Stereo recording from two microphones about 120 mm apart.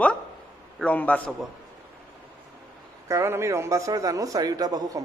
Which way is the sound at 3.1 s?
25° right (ahead or behind).